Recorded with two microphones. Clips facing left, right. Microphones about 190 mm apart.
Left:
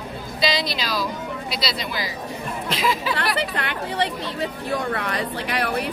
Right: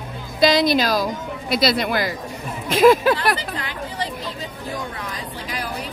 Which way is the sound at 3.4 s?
65° left (ahead or behind).